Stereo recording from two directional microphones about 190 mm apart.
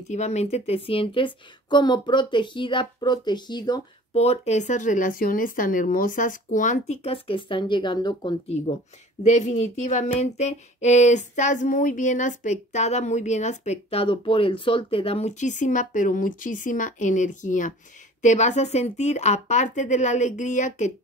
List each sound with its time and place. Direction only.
0.1 s a woman's voice: 35° left (ahead or behind)
4.1 s speech: 35° left (ahead or behind)
9.2 s speech: 40° left (ahead or behind)